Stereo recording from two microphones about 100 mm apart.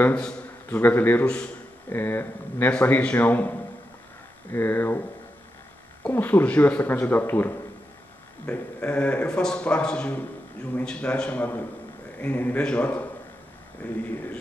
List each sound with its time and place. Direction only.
0.0 s a man's voice: 15° left (ahead or behind)
6.0 s a man's voice: 20° left (ahead or behind)